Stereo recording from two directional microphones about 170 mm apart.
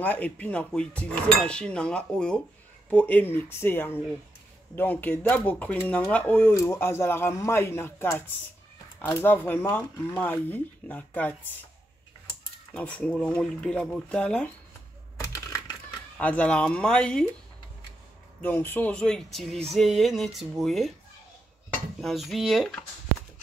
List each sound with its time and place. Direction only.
0.0 s dishes: 10° left (ahead or behind)
12.7 s speech: 10° left (ahead or behind)
16.2 s speech: 10° left (ahead or behind)
18.4 s speech: 10° left (ahead or behind)
22.0 s speech: centre (ahead or behind)